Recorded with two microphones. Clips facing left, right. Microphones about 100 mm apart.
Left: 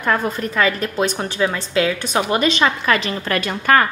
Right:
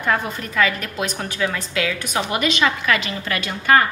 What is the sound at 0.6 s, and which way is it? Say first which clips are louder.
A woman's voice: left 2 dB; 35° left (ahead or behind).